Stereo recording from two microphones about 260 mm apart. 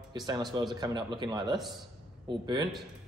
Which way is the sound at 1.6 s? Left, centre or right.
Centre.